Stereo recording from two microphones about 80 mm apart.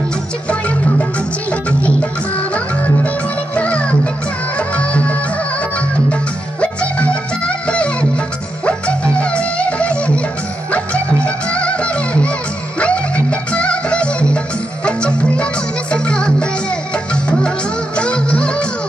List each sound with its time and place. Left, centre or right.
0.5 s music: centre
11.2 s music: centre
16.9 s music of bollywood: centre